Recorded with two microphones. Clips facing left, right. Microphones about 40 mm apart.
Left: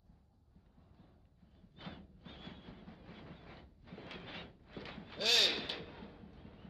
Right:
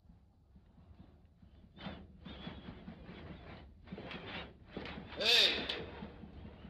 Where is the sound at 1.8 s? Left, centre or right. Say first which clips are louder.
Right 2 dB; centre.